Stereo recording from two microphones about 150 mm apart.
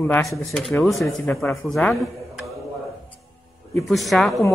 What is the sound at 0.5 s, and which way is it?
Speech, centre (ahead or behind).